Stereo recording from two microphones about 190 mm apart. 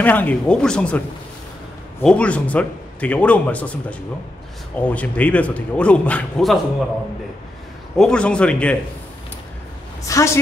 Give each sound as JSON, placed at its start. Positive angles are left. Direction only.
{"t": 0.0, "sound": "a man's voice", "side_deg": 10}
{"t": 8.0, "sound": "a man's voice", "side_deg": 5}
{"t": 10.0, "sound": "a man's voice", "side_deg": 15}